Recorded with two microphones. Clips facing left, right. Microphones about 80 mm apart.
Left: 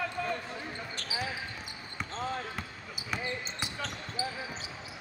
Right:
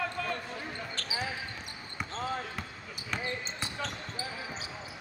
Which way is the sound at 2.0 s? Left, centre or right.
Centre.